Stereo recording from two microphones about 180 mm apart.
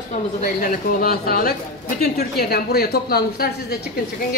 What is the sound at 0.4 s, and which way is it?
A woman's voice, 50° left (ahead or behind).